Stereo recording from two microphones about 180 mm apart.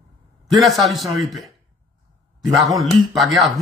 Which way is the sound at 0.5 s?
Centre (ahead or behind).